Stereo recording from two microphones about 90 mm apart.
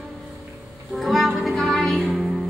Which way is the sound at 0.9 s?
Centre (ahead or behind).